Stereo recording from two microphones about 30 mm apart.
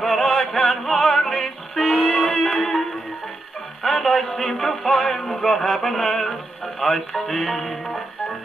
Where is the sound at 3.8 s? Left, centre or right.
Centre.